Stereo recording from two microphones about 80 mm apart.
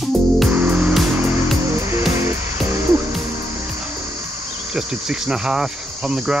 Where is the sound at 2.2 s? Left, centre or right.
Right.